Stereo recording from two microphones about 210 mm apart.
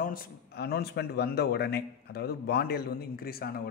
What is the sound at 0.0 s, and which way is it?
Speech, 45° left (ahead or behind).